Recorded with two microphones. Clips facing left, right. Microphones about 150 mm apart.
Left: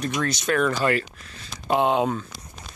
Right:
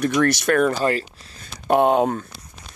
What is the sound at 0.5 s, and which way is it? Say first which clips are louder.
Speech: right 3 dB; 45° right (ahead or behind).